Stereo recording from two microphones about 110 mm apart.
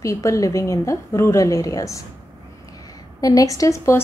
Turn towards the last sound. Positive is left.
turn(degrees=25)  # may be behind; listen again after turning